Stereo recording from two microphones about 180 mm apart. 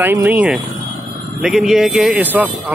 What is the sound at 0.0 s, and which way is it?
Speech, 10° right (ahead or behind).